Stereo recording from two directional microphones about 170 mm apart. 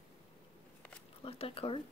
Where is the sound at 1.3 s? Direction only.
35° left (ahead or behind).